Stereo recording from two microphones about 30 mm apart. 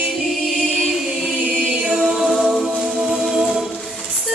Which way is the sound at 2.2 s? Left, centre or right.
Centre.